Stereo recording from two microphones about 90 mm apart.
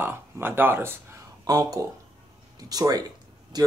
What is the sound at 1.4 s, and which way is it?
Speech, 45° right (ahead or behind).